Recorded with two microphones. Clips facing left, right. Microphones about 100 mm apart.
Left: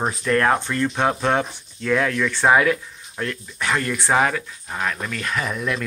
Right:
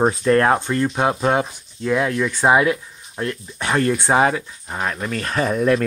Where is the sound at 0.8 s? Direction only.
15° right (ahead or behind).